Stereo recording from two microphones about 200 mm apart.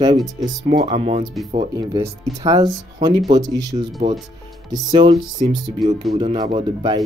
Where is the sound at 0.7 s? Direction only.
25° right (ahead or behind).